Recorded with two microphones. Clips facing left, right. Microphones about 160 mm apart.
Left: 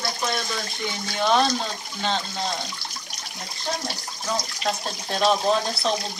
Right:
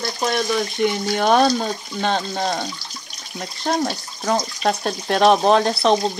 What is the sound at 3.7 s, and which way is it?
Speech, 65° right (ahead or behind).